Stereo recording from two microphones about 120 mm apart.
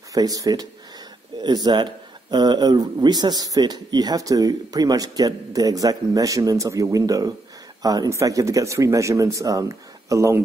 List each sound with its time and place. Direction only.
0.1 s a man's voice: 30° right (ahead or behind)